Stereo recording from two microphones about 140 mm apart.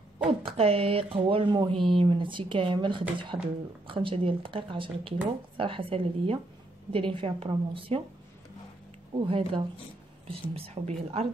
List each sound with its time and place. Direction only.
0.2 s speech: 40° right (ahead or behind)
9.1 s speech: 40° right (ahead or behind)